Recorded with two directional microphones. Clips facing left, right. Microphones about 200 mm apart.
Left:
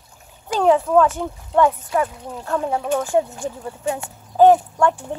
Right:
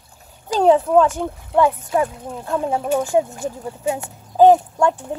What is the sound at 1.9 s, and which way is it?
Speech, 25° right (ahead or behind).